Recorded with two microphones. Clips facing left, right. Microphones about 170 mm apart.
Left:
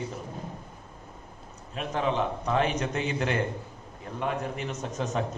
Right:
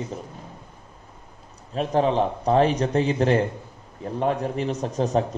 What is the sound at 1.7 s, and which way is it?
A man's voice, 35° right (ahead or behind).